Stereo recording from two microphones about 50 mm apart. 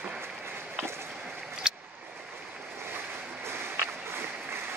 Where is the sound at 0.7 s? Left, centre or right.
Right.